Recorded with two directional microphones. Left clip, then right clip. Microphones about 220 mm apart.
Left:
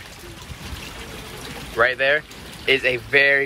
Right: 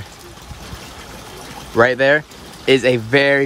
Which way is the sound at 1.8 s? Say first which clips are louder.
Right 5 dB; 45° right (ahead or behind).